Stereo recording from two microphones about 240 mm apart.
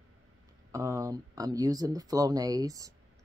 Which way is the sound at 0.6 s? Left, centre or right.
Centre.